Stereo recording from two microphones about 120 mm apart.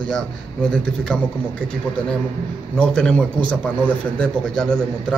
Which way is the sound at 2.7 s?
5° left (ahead or behind).